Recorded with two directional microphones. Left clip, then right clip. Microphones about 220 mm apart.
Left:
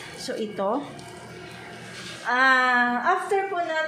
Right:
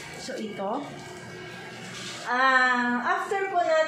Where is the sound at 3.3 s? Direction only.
40° left (ahead or behind).